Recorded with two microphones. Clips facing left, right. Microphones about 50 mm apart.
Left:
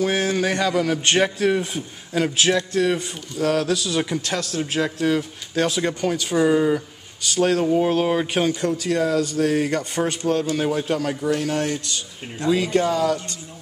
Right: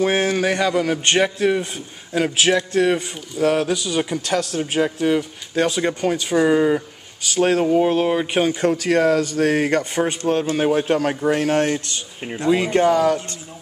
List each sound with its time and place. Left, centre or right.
0.0 s speech: right
0.5 s speech: centre
2.2 s speech: centre
2.7 s speech: right
3.7 s speech: centre
7.3 s speech: right
7.6 s speech: centre
8.7 s speech: right